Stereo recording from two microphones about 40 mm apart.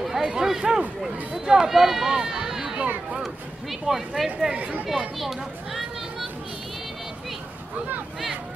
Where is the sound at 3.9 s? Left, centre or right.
Centre.